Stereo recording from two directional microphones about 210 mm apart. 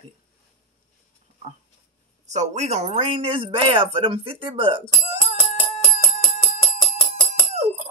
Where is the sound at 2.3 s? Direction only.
35° right (ahead or behind).